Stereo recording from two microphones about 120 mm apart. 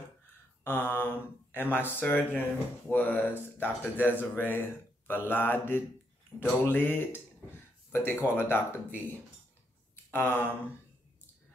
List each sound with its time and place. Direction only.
0.7 s speech: 15° left (ahead or behind)
10.1 s speech: 20° left (ahead or behind)